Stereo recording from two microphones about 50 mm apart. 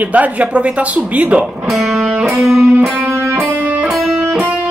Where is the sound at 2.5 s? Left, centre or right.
Right.